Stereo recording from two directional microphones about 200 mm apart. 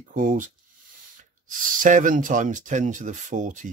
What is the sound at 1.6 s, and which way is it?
Speech, 40° right (ahead or behind).